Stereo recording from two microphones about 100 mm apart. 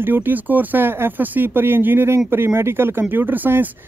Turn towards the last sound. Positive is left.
turn(degrees=-20)  # may be behind; listen again after turning